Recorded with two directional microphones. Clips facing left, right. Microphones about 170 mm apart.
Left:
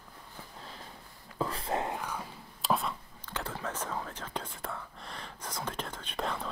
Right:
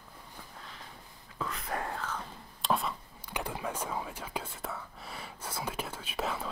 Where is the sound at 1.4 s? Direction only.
30° left (ahead or behind); by 3.0 s centre (ahead or behind).